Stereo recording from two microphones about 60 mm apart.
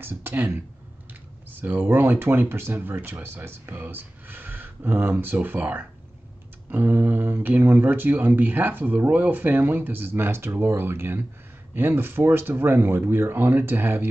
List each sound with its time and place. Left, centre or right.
0.0 s speech: right
1.5 s speech: right